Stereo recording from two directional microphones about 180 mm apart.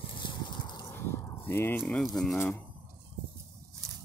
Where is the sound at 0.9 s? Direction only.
15° left (ahead or behind).